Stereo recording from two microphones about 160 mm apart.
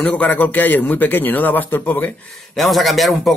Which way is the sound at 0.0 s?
10° left (ahead or behind).